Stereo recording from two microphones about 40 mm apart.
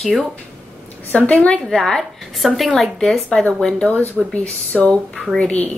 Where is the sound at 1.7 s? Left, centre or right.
Centre.